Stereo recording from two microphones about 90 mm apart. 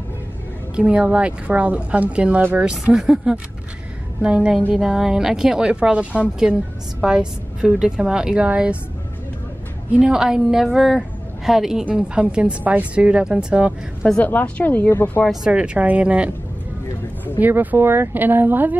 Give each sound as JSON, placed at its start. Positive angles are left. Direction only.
{"t": 0.7, "sound": "speech", "side_deg": -15}
{"t": 9.9, "sound": "a woman's voice", "side_deg": -10}
{"t": 14.2, "sound": "speech", "side_deg": 20}
{"t": 15.4, "sound": "speech", "side_deg": -10}
{"t": 17.4, "sound": "speech", "side_deg": -20}